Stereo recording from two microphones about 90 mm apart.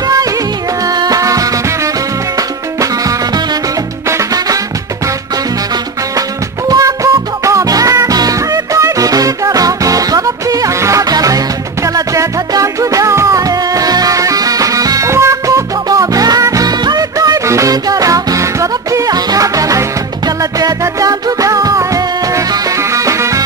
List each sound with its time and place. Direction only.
0.8 s music: 45° right (ahead or behind)
4.1 s music: 40° right (ahead or behind)
6.7 s music: 35° right (ahead or behind)